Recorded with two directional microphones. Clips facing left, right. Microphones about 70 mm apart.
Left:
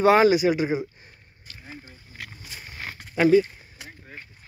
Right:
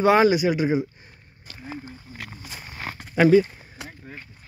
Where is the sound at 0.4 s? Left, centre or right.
Centre.